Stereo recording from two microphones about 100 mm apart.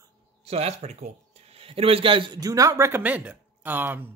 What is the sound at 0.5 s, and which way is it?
Speech, 90° right.